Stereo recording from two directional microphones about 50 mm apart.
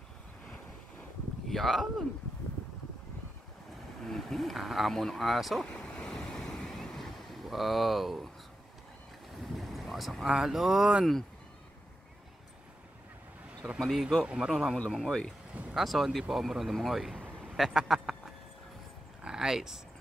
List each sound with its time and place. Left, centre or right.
1.5 s speech: centre
4.0 s speech: centre
5.7 s vehicle: left
6.1 s waves: centre
9.4 s speech: centre
13.7 s speech: centre
14.2 s speech: centre
14.5 s speech: centre
15.0 s speech: centre
15.7 s speech: centre
17.4 s a sound: centre